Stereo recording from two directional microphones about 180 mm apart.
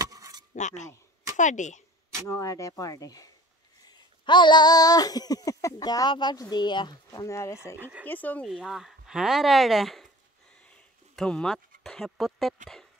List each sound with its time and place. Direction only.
0.0 s a sound: 20° right (ahead or behind)
0.6 s speech: 40° left (ahead or behind)
2.2 s speech: 15° left (ahead or behind)
4.3 s speech: 25° left (ahead or behind); by 8.5 s 10° left (ahead or behind)
8.5 s speech: centre (ahead or behind)
11.1 s speech: 5° left (ahead or behind)